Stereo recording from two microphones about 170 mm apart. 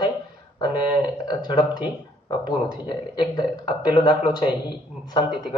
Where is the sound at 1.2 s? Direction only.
25° left (ahead or behind).